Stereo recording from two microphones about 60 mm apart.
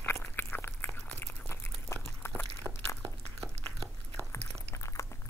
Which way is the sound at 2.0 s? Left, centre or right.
Left.